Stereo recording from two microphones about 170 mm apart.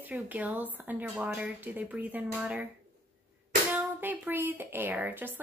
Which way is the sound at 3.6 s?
10° right (ahead or behind).